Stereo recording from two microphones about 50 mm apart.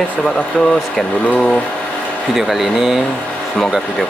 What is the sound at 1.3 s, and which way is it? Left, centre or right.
Speech, centre.